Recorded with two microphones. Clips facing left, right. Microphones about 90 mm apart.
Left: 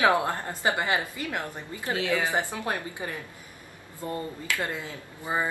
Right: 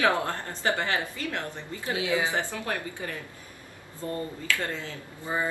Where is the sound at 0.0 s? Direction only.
20° left (ahead or behind).